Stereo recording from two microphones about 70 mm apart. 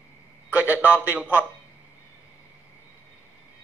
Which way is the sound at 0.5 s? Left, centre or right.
Right.